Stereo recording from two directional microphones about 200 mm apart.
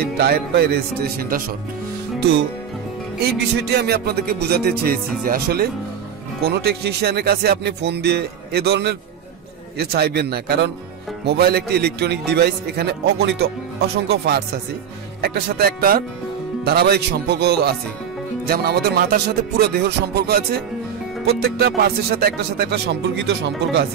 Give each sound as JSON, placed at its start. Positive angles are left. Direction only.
{"t": 0.0, "sound": "music", "side_deg": -50}
{"t": 3.3, "sound": "music", "side_deg": -55}
{"t": 6.5, "sound": "a man's voice", "side_deg": -55}
{"t": 9.8, "sound": "music", "side_deg": -55}
{"t": 11.2, "sound": "a man's voice", "side_deg": -55}
{"t": 15.2, "sound": "music", "side_deg": -55}